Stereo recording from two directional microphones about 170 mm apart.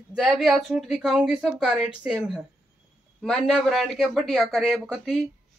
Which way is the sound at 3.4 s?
Centre (ahead or behind).